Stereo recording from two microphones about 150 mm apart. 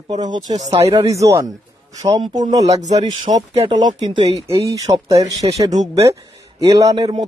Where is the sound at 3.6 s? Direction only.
35° right (ahead or behind).